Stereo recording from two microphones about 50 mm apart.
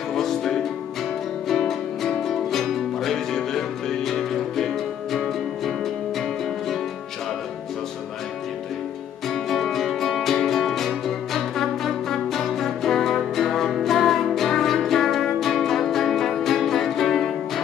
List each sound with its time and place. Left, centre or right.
0.1 s music: centre
9.3 s music: centre